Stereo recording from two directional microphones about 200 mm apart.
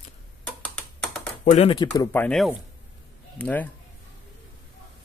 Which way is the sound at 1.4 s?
35° left (ahead or behind).